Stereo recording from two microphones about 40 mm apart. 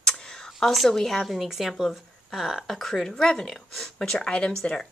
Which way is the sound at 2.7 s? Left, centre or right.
Centre.